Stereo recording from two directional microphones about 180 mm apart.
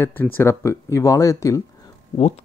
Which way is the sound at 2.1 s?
35° left (ahead or behind).